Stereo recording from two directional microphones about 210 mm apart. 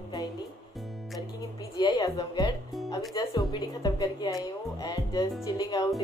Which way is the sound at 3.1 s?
20° left (ahead or behind).